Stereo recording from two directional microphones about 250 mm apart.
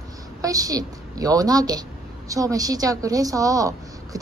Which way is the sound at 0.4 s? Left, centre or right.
Centre.